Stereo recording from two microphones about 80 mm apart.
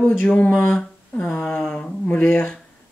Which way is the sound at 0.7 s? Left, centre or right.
Centre.